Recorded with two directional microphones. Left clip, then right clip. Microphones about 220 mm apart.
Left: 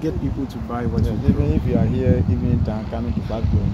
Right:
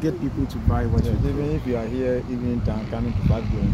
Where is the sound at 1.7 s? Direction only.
5° left (ahead or behind).